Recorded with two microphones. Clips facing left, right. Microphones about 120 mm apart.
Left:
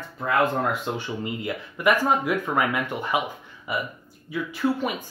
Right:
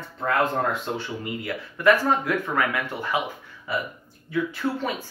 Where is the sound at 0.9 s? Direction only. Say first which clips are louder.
Left 1 dB; 20° left (ahead or behind).